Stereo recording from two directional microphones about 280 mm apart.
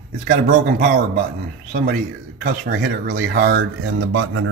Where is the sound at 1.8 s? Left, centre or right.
Right.